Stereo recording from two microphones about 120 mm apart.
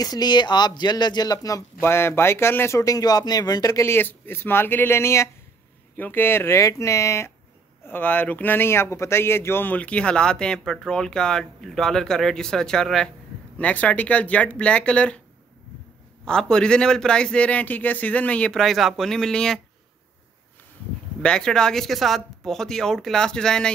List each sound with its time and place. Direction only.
0.0 s speech: 35° left (ahead or behind)
1.8 s speech: 20° left (ahead or behind)
16.3 s speech: 5° left (ahead or behind)
21.2 s speech: 5° left (ahead or behind)